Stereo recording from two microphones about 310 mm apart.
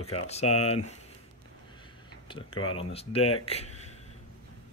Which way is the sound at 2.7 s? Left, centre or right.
Centre.